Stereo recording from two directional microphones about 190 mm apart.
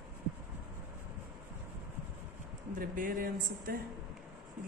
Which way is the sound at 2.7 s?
45° right (ahead or behind).